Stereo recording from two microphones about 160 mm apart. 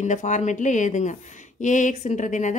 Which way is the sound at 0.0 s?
50° left (ahead or behind).